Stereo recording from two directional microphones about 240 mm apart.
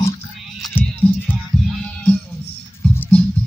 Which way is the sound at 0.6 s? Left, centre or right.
Centre.